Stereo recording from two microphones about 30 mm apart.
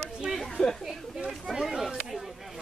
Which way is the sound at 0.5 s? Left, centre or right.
Left.